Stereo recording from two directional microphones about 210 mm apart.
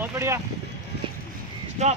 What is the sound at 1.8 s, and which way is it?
Speech, 35° right (ahead or behind).